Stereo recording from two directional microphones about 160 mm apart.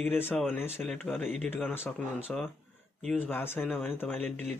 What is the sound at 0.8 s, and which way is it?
A man's voice, centre (ahead or behind).